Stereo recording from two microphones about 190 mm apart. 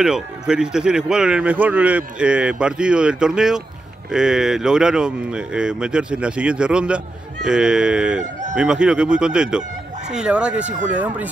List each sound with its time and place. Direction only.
0.0 s speech: 5° right (ahead or behind)
8.2 s speech: 40° right (ahead or behind)
8.5 s speech: 5° right (ahead or behind)